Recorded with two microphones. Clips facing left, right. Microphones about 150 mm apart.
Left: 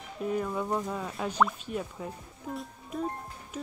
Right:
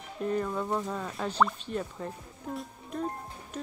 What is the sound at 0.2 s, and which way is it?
Speech, 5° left (ahead or behind).